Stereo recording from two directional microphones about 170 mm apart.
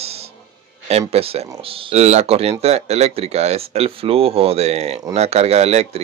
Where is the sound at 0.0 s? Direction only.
35° right (ahead or behind).